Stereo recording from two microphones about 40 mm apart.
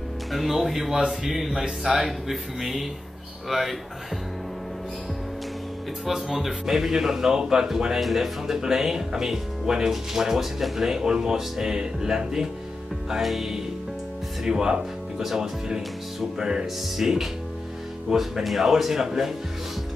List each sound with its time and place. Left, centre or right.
0.3 s speech: centre
6.0 s speech: centre
14.4 s speech: centre
16.9 s speech: centre